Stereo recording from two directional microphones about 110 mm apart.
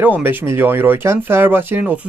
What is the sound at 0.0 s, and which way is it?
Speech, 15° right (ahead or behind).